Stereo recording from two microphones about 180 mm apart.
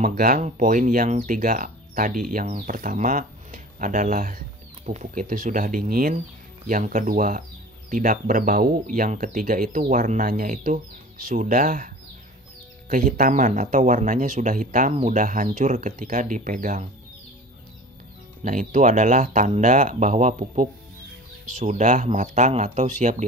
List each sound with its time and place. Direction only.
0.0 s speech: 55° right (ahead or behind)
12.9 s speech: 50° right (ahead or behind)
18.4 s speech: 50° right (ahead or behind)